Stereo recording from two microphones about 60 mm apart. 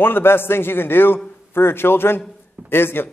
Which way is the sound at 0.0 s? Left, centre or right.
Left.